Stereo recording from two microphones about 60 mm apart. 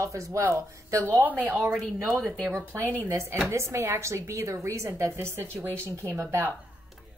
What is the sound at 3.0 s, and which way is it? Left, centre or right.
Speech, right.